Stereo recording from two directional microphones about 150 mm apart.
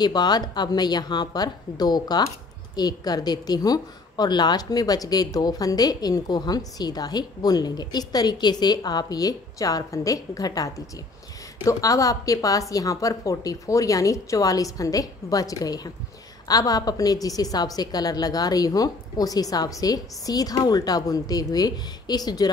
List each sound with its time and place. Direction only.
0.0 s a woman's voice: 25° left (ahead or behind)